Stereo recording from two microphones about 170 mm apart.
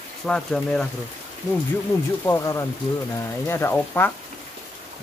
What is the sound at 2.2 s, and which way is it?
Speech, 15° left (ahead or behind).